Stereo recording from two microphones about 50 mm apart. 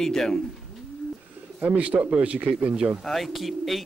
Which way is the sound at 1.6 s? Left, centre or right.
Right.